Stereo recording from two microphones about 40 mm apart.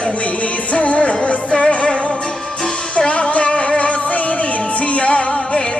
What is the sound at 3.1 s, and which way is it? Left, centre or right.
Music, left.